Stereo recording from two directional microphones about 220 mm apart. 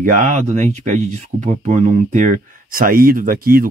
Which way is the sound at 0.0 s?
35° right (ahead or behind).